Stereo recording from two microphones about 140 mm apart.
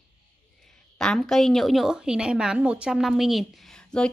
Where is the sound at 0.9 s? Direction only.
5° left (ahead or behind).